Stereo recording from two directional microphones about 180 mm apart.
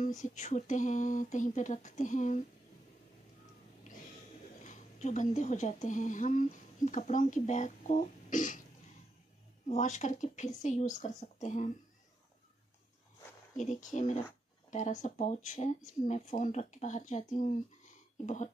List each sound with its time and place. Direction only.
0.2 s speech: 40° left (ahead or behind)
4.6 s speech: 40° left (ahead or behind)
9.7 s speech: 40° left (ahead or behind)
13.6 s speech: 45° left (ahead or behind)